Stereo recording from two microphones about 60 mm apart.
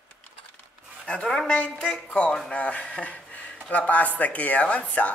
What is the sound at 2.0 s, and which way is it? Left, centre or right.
A woman's voice, left.